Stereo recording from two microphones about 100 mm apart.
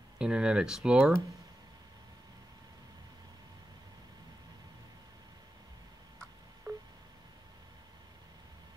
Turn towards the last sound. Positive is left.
turn(degrees=-35)  # may be behind; listen again after turning